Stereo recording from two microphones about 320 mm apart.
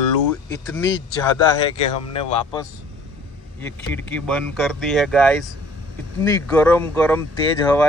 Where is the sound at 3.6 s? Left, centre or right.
Centre.